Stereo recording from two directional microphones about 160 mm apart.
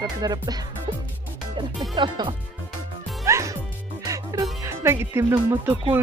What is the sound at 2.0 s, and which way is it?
Speech, 30° right (ahead or behind).